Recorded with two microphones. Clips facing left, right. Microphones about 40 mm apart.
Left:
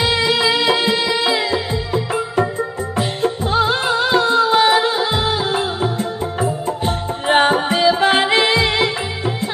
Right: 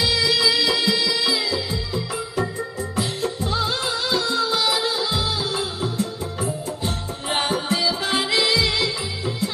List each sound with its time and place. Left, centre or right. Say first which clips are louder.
0.0 s music: left 4 dB; left
3.0 s music: left 6 dB; left